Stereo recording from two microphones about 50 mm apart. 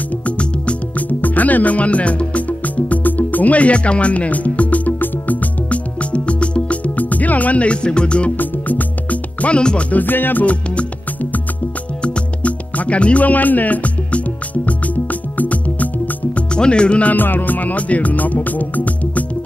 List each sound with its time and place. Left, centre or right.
0.4 s music: left
6.1 s music: left
8.4 s music: left
10.0 s music: left
10.4 s music: left
12.0 s music: left
16.5 s music: centre
17.1 s music: left